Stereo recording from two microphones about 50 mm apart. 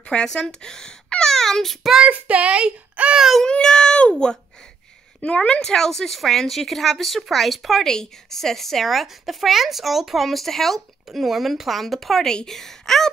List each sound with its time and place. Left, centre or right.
0.0 s speech: centre
2.0 s speech: right
3.2 s speech: centre
3.4 s a child's voice: centre
5.2 s a woman's voice: left
5.6 s speech: centre
7.8 s speech: centre